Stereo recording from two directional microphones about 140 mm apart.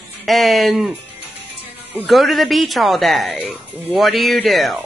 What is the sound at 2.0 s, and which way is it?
Speech, centre (ahead or behind).